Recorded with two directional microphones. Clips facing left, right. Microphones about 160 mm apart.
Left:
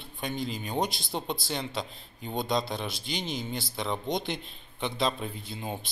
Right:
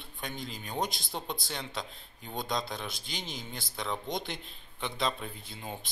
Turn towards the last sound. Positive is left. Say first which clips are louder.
# left 5 dB
turn(degrees=20)  # may be behind; listen again after turning